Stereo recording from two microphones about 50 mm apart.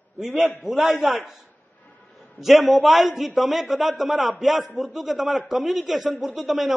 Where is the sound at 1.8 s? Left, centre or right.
Left.